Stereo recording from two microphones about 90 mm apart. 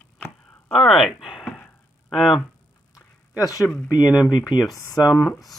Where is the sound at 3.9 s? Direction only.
45° left (ahead or behind).